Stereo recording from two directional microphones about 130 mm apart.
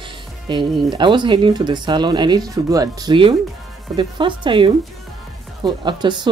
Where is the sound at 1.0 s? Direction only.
35° right (ahead or behind).